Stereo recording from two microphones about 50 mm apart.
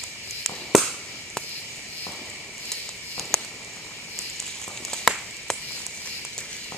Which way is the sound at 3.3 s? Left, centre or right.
Centre.